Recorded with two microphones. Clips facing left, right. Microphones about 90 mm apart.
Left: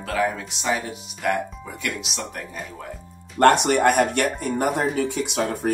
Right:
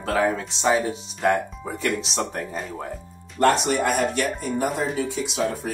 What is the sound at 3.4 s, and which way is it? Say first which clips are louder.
Speech: left 4 dB; 60° left (ahead or behind).